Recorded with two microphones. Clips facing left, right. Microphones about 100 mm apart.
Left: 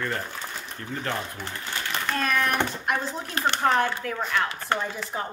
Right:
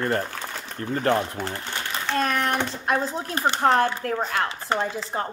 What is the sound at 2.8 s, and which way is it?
Speech, 35° right (ahead or behind).